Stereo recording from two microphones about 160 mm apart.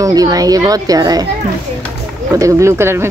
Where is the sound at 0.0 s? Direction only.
25° right (ahead or behind).